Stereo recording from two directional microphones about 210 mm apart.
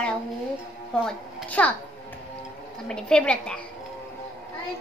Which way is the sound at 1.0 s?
5° left (ahead or behind).